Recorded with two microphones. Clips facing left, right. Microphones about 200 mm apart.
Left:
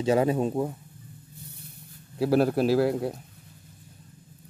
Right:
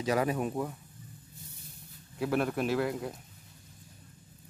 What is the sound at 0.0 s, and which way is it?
Speech, 25° left (ahead or behind).